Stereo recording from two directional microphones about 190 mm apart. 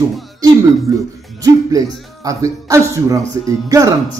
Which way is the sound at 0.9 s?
20° right (ahead or behind).